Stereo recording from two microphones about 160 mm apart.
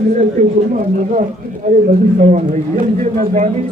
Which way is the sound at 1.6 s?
50° right (ahead or behind).